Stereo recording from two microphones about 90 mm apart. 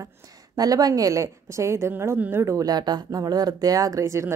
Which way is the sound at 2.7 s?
50° right (ahead or behind).